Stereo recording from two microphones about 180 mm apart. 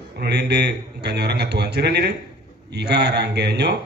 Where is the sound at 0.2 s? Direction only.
65° right (ahead or behind).